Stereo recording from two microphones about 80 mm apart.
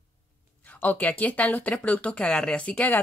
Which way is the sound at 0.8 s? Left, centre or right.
Centre.